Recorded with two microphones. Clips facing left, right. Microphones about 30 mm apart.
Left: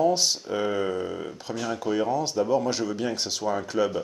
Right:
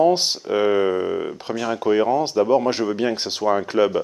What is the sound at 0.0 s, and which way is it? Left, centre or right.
Speech, right.